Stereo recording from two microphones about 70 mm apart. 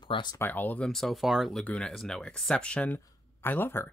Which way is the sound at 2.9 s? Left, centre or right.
Left.